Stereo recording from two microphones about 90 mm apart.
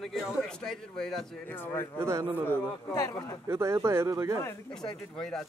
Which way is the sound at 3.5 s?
30° right (ahead or behind).